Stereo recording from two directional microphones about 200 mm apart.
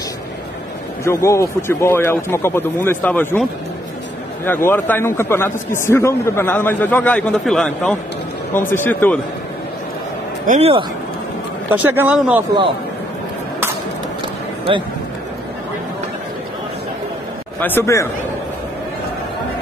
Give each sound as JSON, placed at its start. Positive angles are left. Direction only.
{"t": 1.0, "sound": "a man's voice", "side_deg": 15}
{"t": 4.5, "sound": "a man's voice", "side_deg": 10}
{"t": 10.4, "sound": "speech", "side_deg": -40}
{"t": 11.7, "sound": "speech", "side_deg": -10}
{"t": 17.6, "sound": "a man's voice", "side_deg": 10}